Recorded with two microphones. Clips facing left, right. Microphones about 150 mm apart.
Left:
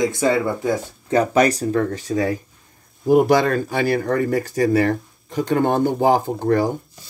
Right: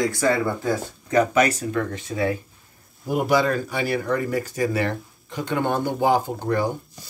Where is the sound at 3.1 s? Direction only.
50° left (ahead or behind).